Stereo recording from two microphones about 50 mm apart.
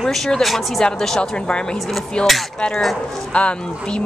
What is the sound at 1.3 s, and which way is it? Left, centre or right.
Speech, centre.